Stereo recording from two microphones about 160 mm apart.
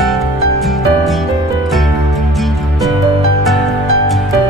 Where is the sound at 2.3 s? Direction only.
Centre (ahead or behind).